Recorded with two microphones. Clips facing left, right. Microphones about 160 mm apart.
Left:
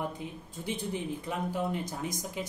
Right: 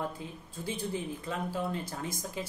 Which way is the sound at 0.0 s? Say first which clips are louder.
Left 1 dB; 20° left (ahead or behind).